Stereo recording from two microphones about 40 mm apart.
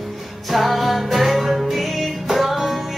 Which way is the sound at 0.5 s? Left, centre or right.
Centre.